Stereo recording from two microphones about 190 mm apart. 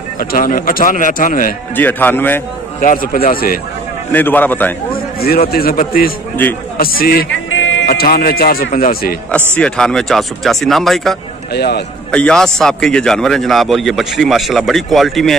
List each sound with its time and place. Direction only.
0.2 s a man's voice: 45° left (ahead or behind)
1.8 s a man's voice: 10° left (ahead or behind)
2.8 s a man's voice: 45° left (ahead or behind)
4.1 s a man's voice: 10° left (ahead or behind)
4.9 s a sound: 55° left (ahead or behind)
5.5 s a man's voice: 50° left (ahead or behind)
7.2 s music: 90° left
7.8 s a man's voice: 55° left (ahead or behind)
9.6 s a man's voice: 5° left (ahead or behind)
11.5 s a man's voice: 60° left (ahead or behind)
12.1 s a man's voice: 5° left (ahead or behind)